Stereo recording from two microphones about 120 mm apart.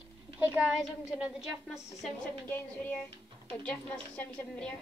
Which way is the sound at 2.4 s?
15° left (ahead or behind).